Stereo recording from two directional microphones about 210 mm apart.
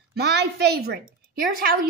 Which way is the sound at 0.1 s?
50° right (ahead or behind).